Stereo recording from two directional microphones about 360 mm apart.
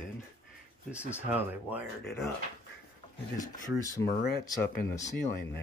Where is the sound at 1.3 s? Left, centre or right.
Centre.